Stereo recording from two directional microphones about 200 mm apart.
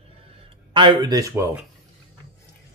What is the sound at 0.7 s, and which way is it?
Speech, 25° right (ahead or behind).